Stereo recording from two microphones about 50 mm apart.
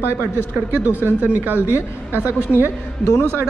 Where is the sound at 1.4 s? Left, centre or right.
Right.